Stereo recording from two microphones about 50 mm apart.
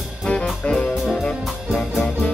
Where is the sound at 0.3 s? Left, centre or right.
Centre.